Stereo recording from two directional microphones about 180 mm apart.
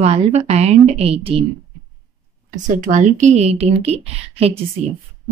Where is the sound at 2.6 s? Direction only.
45° right (ahead or behind).